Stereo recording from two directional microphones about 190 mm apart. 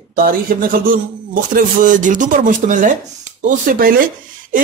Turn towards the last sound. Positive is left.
turn(degrees=-50)  # may be behind; listen again after turning